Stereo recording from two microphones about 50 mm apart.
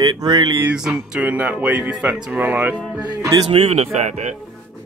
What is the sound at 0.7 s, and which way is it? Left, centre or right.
Speech, centre.